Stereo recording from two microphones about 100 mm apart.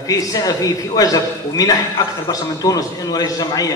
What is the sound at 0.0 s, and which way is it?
A man's voice, 35° left (ahead or behind).